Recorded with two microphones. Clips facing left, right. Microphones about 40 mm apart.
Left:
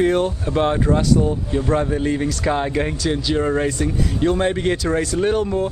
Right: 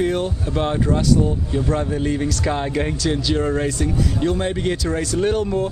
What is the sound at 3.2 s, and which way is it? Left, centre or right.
Speech, centre.